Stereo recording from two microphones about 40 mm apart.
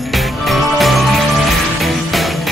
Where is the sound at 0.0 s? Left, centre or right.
Centre.